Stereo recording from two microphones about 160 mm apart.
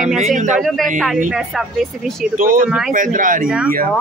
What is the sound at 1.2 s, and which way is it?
Speech, 5° right (ahead or behind).